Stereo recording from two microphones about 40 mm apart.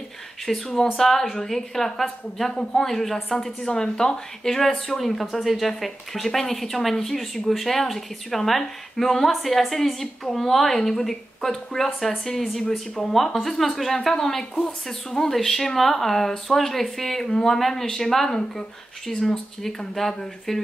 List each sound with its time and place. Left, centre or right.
0.5 s speech: centre
2.5 s a man's voice: centre
2.9 s speech: centre
4.6 s a woman's voice: centre